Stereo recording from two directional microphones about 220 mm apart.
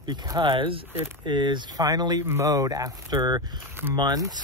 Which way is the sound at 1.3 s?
20° right (ahead or behind).